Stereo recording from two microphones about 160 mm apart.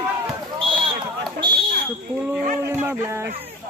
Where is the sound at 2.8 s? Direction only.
15° right (ahead or behind).